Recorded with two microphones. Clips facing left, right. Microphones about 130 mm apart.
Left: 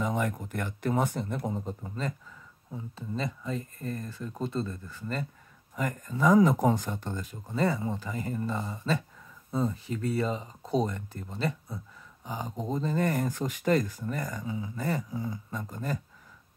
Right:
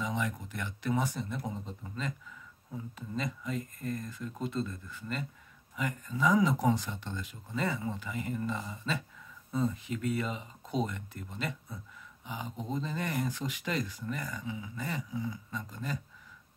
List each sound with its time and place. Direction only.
0.0 s speech: 50° left (ahead or behind)
1.8 s speech: 40° left (ahead or behind)
2.7 s speech: 30° left (ahead or behind); by 16.0 s 45° left (ahead or behind)